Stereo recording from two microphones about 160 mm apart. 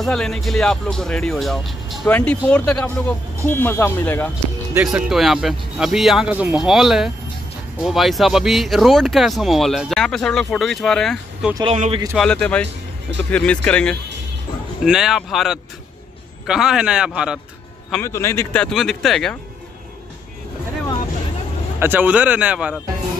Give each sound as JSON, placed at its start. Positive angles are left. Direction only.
{"t": 0.0, "sound": "speech", "side_deg": 5}
{"t": 4.8, "sound": "speech", "side_deg": 0}
{"t": 11.7, "sound": "speech", "side_deg": -45}
{"t": 12.1, "sound": "speech", "side_deg": 5}
{"t": 18.0, "sound": "speech", "side_deg": 15}
{"t": 18.6, "sound": "speech", "side_deg": 0}
{"t": 21.7, "sound": "a man's voice", "side_deg": -10}